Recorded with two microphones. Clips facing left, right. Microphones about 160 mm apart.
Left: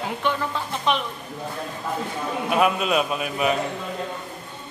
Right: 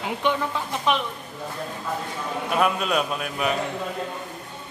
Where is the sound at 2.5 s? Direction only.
5° left (ahead or behind).